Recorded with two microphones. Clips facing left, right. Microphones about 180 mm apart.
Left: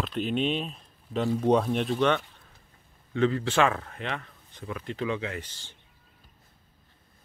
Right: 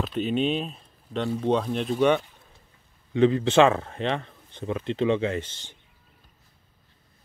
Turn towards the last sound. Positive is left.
turn(degrees=-20)  # may be behind; listen again after turning